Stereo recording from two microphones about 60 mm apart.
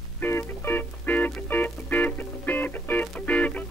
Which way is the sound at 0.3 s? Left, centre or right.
Left.